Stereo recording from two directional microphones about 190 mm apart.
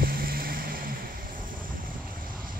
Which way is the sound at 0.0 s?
50° right (ahead or behind).